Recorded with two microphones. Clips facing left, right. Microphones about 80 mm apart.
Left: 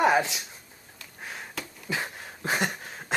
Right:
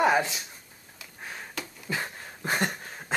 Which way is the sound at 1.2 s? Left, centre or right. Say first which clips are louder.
Even; centre.